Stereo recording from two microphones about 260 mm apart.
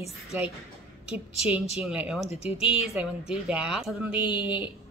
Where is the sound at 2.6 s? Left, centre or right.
Centre.